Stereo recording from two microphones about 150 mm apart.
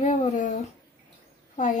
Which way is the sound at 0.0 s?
55° left (ahead or behind).